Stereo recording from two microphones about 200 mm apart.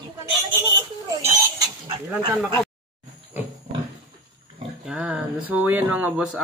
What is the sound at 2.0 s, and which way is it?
Speech, 10° right (ahead or behind).